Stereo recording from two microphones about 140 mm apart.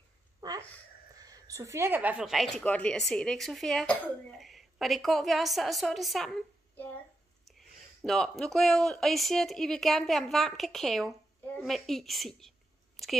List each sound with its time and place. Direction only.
0.4 s a sound: 25° right (ahead or behind)
1.2 s a woman's voice: 25° right (ahead or behind); by 6.9 s 5° left (ahead or behind)
8.0 s speech: 5° left (ahead or behind)